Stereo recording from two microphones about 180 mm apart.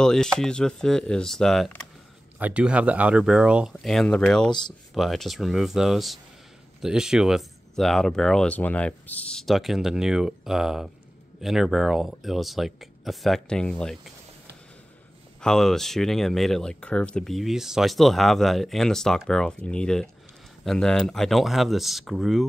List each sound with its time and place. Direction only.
0.0 s speech: 5° left (ahead or behind)
2.3 s speech: 10° right (ahead or behind)
4.5 s speech: 25° left (ahead or behind)
4.9 s speech: centre (ahead or behind)
15.4 s speech: 5° left (ahead or behind)